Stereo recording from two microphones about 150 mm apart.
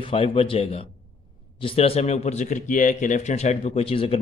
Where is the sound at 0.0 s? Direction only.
40° left (ahead or behind).